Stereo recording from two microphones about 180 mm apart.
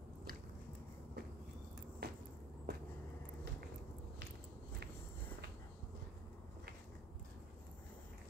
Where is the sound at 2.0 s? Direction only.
65° right (ahead or behind).